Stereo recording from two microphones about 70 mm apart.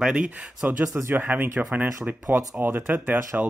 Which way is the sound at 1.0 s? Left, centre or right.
Right.